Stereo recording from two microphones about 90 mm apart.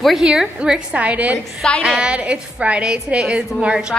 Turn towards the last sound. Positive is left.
turn(degrees=-10)  # may be behind; listen again after turning